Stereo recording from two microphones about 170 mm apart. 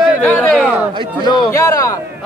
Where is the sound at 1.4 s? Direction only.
15° left (ahead or behind).